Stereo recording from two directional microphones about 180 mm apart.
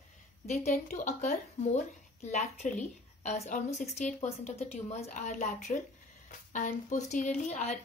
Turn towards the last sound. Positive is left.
turn(degrees=35)  # may be behind; listen again after turning